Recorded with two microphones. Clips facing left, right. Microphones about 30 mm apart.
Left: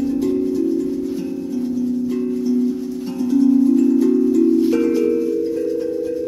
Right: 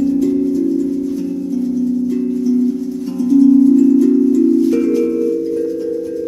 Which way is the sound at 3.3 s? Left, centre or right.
Centre.